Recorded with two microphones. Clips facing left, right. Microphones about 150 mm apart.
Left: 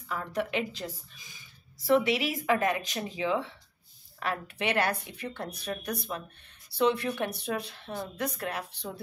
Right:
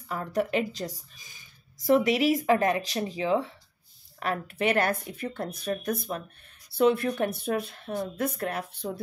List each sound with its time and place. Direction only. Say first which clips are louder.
0.1 s speech: right 4 dB; 40° right (ahead or behind)